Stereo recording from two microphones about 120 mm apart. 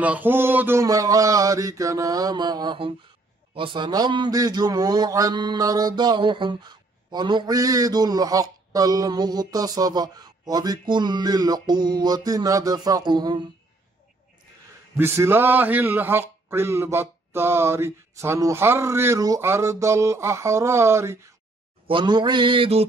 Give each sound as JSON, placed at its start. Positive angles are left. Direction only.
{"t": 0.0, "sound": "speech", "side_deg": -15}
{"t": 0.8, "sound": "a man's voice", "side_deg": -30}
{"t": 15.0, "sound": "speech", "side_deg": -20}
{"t": 21.8, "sound": "mantra", "side_deg": -40}